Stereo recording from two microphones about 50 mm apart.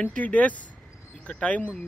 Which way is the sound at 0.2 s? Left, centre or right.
Left.